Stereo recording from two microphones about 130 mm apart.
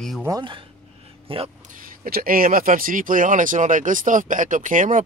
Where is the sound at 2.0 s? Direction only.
90° right.